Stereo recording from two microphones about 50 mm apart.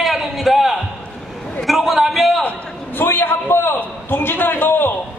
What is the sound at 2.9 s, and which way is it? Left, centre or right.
A man's voice, left.